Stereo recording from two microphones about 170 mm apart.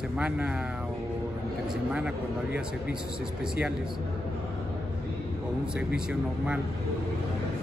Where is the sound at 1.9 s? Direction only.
5° right (ahead or behind).